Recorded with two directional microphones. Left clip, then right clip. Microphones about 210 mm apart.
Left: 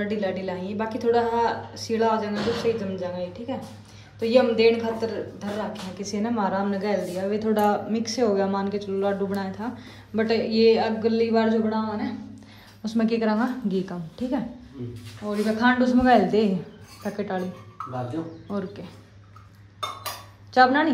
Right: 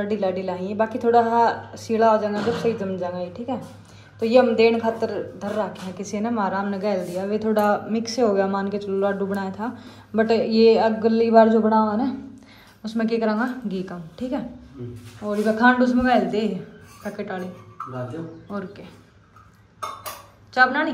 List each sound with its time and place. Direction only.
0.0 s a woman's voice: 10° left (ahead or behind)
12.8 s a woman's voice: 20° left (ahead or behind)
18.5 s a woman's voice: 25° left (ahead or behind)
20.5 s a woman's voice: 25° left (ahead or behind)